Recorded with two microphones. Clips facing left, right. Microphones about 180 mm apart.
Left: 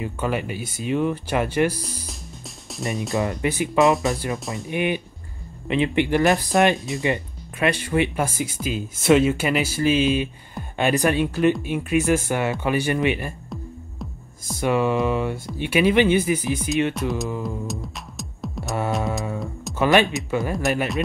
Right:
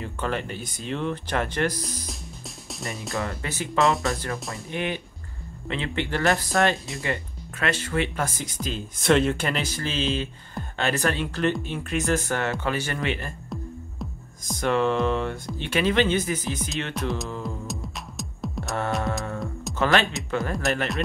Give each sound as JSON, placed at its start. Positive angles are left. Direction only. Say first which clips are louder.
{"t": 0.0, "sound": "speech", "louder": "left 4 dB", "side_deg": 10}
{"t": 3.2, "sound": "speech", "louder": "left 7 dB", "side_deg": 15}
{"t": 3.8, "sound": "speech", "louder": "left 4 dB", "side_deg": 0}
{"t": 4.6, "sound": "speech", "louder": "left 6 dB", "side_deg": 15}
{"t": 14.5, "sound": "speech", "louder": "left 2 dB", "side_deg": 10}
{"t": 16.9, "sound": "speech", "louder": "left 3 dB", "side_deg": 0}
{"t": 17.4, "sound": "music", "louder": "left 4 dB", "side_deg": 0}
{"t": 19.8, "sound": "speech", "louder": "left 4 dB", "side_deg": 15}
{"t": 20.2, "sound": "speech", "louder": "left 3 dB", "side_deg": 5}